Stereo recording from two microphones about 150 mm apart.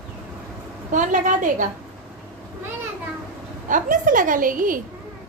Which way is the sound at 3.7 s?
60° right (ahead or behind).